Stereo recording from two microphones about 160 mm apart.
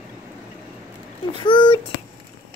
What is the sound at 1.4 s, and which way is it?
Speech, 30° left (ahead or behind).